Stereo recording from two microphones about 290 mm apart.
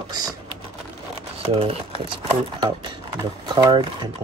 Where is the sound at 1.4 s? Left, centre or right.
Centre.